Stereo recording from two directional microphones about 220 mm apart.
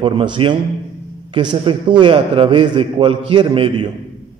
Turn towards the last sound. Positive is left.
turn(degrees=-20)  # may be behind; listen again after turning